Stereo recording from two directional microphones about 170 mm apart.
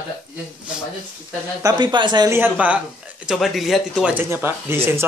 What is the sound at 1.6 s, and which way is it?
Speech, 25° right (ahead or behind).